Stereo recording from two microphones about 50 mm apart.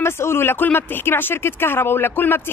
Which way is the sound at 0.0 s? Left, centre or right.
Left.